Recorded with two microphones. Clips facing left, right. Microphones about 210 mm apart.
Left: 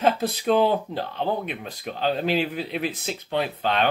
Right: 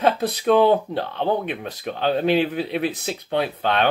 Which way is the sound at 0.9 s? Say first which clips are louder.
Right 4 dB; 50° right (ahead or behind).